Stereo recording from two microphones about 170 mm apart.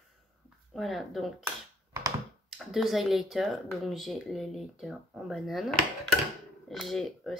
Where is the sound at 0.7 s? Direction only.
Centre (ahead or behind).